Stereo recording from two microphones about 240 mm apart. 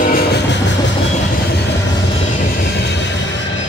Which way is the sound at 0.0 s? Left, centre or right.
Left.